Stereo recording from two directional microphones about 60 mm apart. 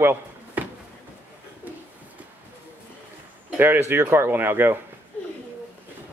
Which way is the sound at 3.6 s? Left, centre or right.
Right.